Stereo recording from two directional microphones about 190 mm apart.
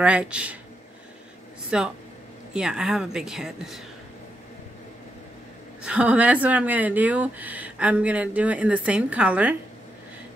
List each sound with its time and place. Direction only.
0.0 s a woman's voice: 5° right (ahead or behind)
1.7 s speech: 5° right (ahead or behind)
5.8 s a woman's voice: 5° right (ahead or behind)